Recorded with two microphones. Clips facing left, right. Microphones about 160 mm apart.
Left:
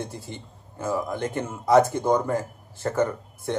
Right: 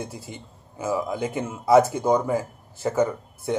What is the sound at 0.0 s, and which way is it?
A man's voice, 10° right (ahead or behind).